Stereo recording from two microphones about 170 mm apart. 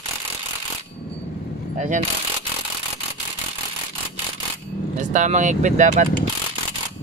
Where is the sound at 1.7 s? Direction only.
45° right (ahead or behind).